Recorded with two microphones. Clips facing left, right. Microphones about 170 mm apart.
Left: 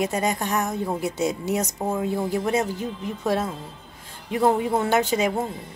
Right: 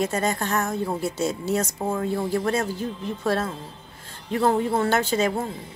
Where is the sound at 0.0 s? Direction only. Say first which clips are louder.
Even; 15° left (ahead or behind).